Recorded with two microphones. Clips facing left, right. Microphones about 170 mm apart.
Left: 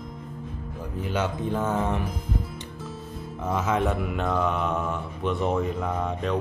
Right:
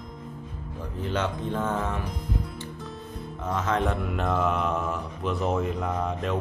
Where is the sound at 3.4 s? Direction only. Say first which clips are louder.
Left 2 dB; 10° left (ahead or behind).